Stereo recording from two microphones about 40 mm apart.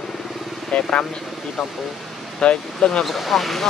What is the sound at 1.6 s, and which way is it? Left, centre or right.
Speech, centre.